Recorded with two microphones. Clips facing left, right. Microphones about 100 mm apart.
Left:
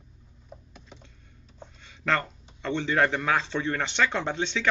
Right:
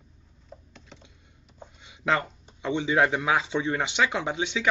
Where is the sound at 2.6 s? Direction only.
10° right (ahead or behind).